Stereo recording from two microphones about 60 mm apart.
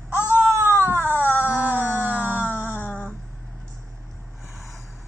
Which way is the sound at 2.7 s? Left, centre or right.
Left.